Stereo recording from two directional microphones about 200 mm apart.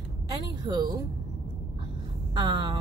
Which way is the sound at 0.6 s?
20° right (ahead or behind).